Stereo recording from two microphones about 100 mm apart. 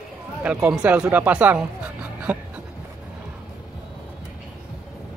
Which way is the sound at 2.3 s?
15° right (ahead or behind).